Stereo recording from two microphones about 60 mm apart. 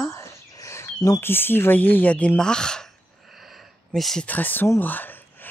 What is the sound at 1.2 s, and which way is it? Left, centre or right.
Speech, left.